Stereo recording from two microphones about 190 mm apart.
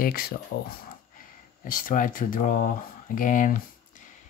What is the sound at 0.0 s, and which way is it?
Speech, 50° left (ahead or behind).